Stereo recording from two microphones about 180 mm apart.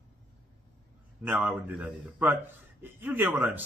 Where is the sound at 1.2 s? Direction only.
10° right (ahead or behind).